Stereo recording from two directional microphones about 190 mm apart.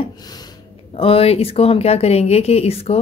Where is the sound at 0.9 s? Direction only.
30° left (ahead or behind).